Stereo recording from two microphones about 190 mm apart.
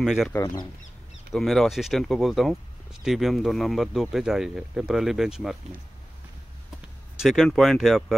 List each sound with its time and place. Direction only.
0.0 s speech: centre (ahead or behind)
0.3 s speech: 15° left (ahead or behind)
1.3 s speech: centre (ahead or behind)
7.2 s speech: centre (ahead or behind)